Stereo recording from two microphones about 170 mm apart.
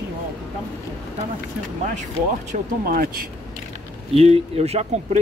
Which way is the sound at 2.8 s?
60° right (ahead or behind).